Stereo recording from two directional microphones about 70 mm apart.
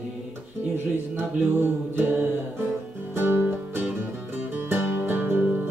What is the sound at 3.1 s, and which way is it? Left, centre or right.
Music, right.